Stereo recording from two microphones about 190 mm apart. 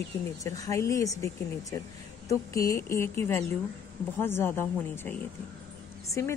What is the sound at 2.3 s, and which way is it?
A woman's voice, 15° left (ahead or behind).